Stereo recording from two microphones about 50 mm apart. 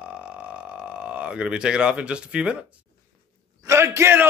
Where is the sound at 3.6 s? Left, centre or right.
Right.